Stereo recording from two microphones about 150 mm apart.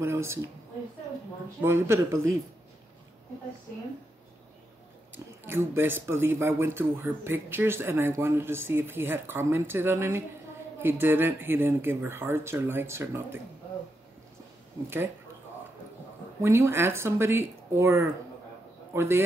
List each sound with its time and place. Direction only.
0.0 s speech: 15° right (ahead or behind)
1.6 s speech: 15° right (ahead or behind)
5.1 s speech: 15° right (ahead or behind)
16.3 s speech: 20° right (ahead or behind)